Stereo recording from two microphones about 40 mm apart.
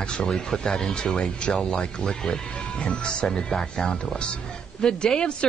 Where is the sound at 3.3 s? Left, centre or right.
Centre.